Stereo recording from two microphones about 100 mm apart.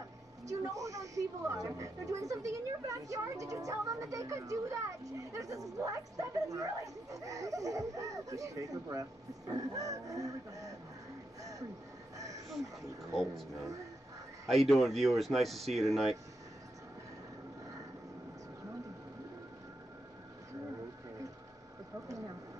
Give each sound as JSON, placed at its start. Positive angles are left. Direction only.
{"t": 0.5, "sound": "speech", "side_deg": -35}
{"t": 13.1, "sound": "speech", "side_deg": 0}
{"t": 14.5, "sound": "speech", "side_deg": 0}